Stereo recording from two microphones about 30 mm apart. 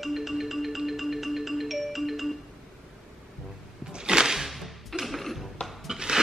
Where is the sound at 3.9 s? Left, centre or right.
Right.